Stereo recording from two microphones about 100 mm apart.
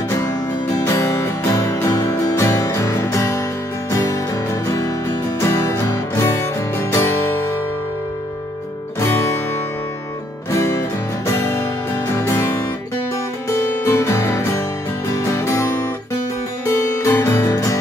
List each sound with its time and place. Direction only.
0.2 s music: 30° left (ahead or behind)
9.0 s music: 25° left (ahead or behind)
10.5 s music: 30° left (ahead or behind)